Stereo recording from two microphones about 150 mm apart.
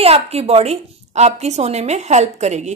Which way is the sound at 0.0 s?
45° right (ahead or behind).